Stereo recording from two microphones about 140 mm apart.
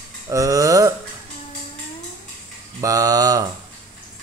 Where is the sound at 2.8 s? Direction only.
25° right (ahead or behind).